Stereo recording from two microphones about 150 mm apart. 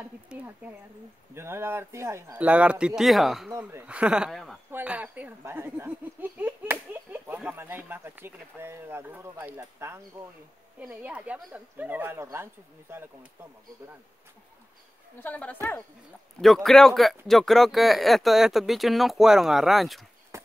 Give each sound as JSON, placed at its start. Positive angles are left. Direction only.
{"t": 0.3, "sound": "a sound", "side_deg": -5}
{"t": 1.3, "sound": "speech", "side_deg": -15}
{"t": 4.6, "sound": "speech", "side_deg": -10}
{"t": 15.1, "sound": "a woman's voice", "side_deg": 10}